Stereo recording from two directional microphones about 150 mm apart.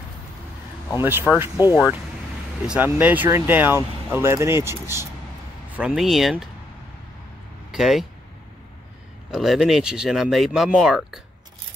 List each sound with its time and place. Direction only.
1.0 s speech: 15° right (ahead or behind)
5.7 s speech: 5° right (ahead or behind)
7.7 s speech: centre (ahead or behind)
9.3 s speech: centre (ahead or behind)